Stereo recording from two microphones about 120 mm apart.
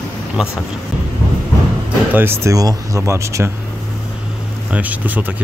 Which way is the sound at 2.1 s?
20° right (ahead or behind).